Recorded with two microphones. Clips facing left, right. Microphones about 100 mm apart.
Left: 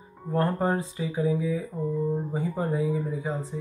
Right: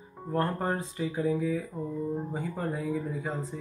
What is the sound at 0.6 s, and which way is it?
Speech, 10° left (ahead or behind).